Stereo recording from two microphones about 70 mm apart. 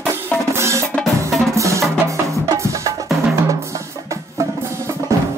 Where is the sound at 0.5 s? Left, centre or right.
Right.